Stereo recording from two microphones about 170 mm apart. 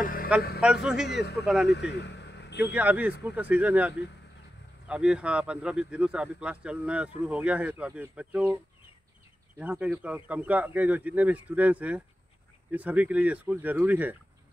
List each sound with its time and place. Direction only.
0.0 s mantra: 55° left (ahead or behind)
0.6 s speech: 5° right (ahead or behind)
1.7 s vehicle: 85° left
2.6 s speech: 10° right (ahead or behind)
9.6 s speech: 10° right (ahead or behind)